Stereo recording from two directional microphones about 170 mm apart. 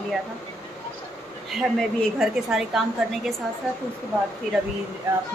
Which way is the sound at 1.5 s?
Centre (ahead or behind).